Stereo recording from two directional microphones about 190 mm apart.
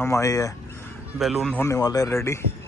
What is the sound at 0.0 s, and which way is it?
Speech, 15° left (ahead or behind).